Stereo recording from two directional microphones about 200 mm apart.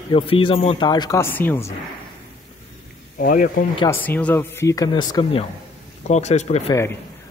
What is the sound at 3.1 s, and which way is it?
Speech, 45° left (ahead or behind).